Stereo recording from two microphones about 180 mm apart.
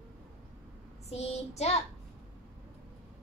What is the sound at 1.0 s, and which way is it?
Speech, 35° left (ahead or behind).